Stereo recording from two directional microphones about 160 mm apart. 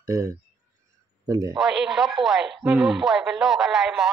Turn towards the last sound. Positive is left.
turn(degrees=-5)  # may be behind; listen again after turning